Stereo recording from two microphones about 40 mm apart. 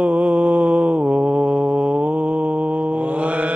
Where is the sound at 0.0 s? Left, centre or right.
Right.